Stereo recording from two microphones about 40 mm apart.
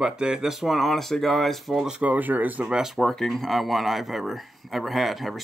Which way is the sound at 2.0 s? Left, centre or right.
Right.